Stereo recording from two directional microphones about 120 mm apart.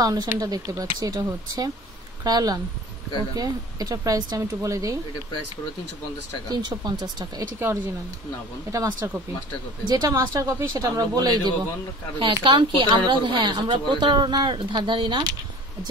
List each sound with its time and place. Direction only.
0.0 s speech: 30° right (ahead or behind)
6.5 s speech: 35° right (ahead or behind)
7.5 s speech: 20° right (ahead or behind)
10.3 s speech: 20° right (ahead or behind)
10.7 s speech: 35° right (ahead or behind)